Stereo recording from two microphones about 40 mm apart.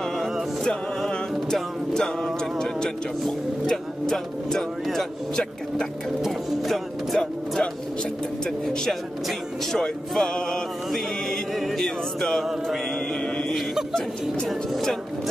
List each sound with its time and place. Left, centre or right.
0.0 s music: centre
5.3 s speech: centre
7.2 s music: centre
12.6 s mantra: centre
13.2 s a sound: centre
14.5 s speech: centre